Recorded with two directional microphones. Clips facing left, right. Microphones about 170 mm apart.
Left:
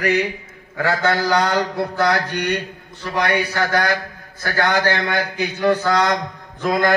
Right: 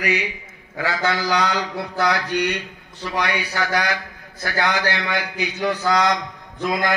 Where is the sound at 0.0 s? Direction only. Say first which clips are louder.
Left 5 dB; 50° left (ahead or behind).